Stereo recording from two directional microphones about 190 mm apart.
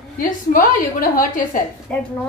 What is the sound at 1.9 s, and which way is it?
Speech, 5° left (ahead or behind).